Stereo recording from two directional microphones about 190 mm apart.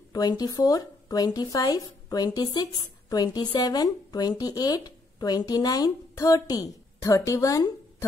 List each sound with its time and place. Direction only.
0.1 s a woman's voice: 20° left (ahead or behind)